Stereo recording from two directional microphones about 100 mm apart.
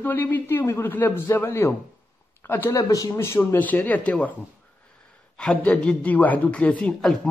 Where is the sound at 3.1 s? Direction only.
25° left (ahead or behind).